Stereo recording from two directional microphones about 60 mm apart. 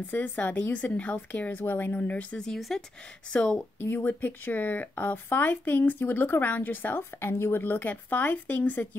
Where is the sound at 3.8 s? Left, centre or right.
Left.